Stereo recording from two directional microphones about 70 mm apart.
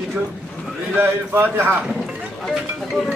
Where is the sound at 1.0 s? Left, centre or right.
Right.